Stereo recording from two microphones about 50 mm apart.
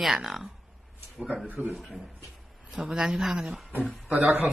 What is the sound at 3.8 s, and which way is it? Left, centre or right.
Speech, right.